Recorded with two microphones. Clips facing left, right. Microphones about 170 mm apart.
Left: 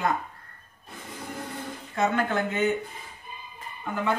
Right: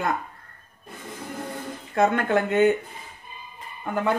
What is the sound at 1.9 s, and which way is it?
Speech, 60° right (ahead or behind).